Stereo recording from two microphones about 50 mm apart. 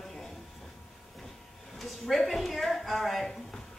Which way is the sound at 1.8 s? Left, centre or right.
Centre.